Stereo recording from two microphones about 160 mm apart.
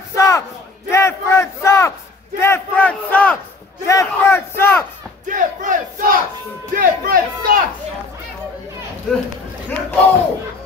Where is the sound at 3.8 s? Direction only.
15° left (ahead or behind).